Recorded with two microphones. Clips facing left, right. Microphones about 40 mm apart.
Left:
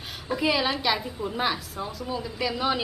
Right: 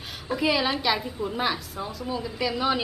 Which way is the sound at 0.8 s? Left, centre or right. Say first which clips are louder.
Right 1 dB; centre.